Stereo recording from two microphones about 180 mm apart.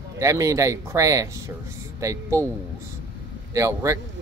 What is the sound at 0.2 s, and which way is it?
Speech, 15° right (ahead or behind).